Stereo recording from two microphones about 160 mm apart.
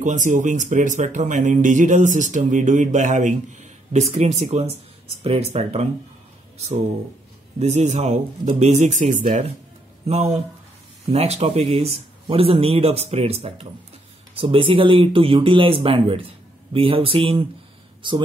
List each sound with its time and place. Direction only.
0.0 s a man's voice: 50° right (ahead or behind)
7.5 s a man's voice: 45° right (ahead or behind)